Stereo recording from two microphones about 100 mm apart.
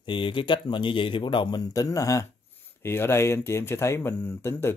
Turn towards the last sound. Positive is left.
turn(degrees=25)  # may be behind; listen again after turning